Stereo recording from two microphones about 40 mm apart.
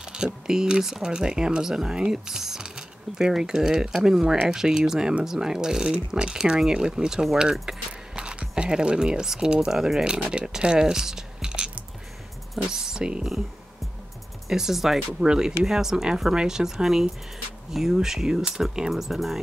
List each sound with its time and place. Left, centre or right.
0.0 s speech: centre
1.1 s speech: right
10.6 s a sound: centre
12.6 s speech: centre
14.5 s speech: centre